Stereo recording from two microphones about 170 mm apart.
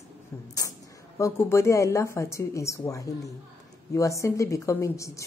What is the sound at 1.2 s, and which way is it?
A woman's voice, 15° left (ahead or behind).